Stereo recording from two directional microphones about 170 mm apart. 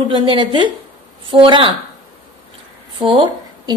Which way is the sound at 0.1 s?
30° right (ahead or behind).